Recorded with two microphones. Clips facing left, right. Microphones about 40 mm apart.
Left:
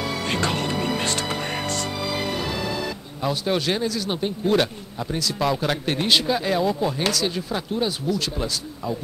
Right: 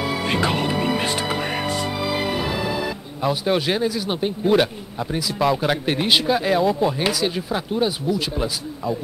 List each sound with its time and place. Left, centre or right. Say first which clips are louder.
0.0 s speech: right 3 dB; centre